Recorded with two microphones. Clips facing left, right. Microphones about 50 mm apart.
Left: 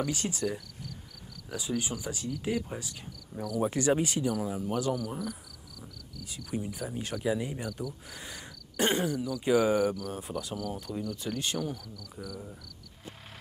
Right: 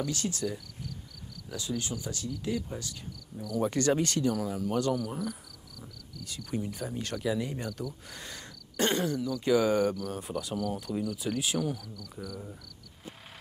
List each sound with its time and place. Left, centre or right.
0.2 s speech: left
1.5 s speech: centre
3.4 s cricket: centre
6.2 s speech: centre
9.1 s cricket: centre